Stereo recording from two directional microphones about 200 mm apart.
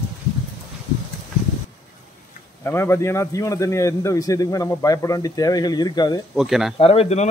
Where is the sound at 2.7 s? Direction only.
15° left (ahead or behind).